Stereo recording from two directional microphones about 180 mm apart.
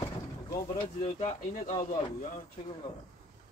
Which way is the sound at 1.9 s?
50° left (ahead or behind).